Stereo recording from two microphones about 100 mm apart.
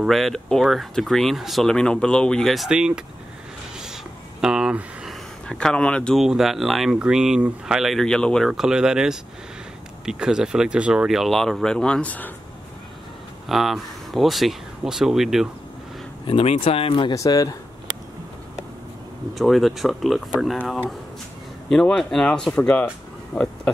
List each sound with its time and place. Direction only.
0.0 s speech: centre (ahead or behind)
3.7 s a sound: 5° right (ahead or behind)
5.5 s speech: 5° left (ahead or behind)
6.1 s speech: 5° right (ahead or behind)
8.5 s speech: 5° right (ahead or behind); by 12.3 s 15° left (ahead or behind)
13.5 s speech: centre (ahead or behind)
16.3 s speech: 65° left (ahead or behind)
17.1 s speech: 35° left (ahead or behind)
19.3 s speech: centre (ahead or behind)
21.6 s speech: 5° left (ahead or behind)
23.3 s a sound: 10° left (ahead or behind)